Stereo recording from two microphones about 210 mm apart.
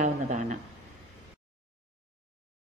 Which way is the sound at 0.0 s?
35° right (ahead or behind).